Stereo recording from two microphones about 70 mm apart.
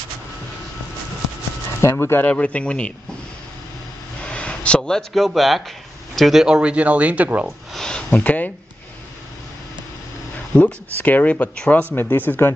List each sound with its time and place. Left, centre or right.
1.8 s speech: left
2.3 s a man's voice: centre
4.3 s speech: centre; by 7.4 s right
7.4 s a sound: centre; by 8.5 s left
10.5 s speech: left
11.9 s speech: left